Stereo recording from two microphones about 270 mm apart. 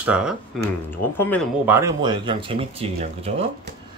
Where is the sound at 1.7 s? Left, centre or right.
Centre.